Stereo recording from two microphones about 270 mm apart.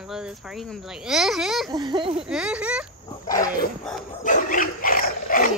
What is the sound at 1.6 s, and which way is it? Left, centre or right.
Speech, centre.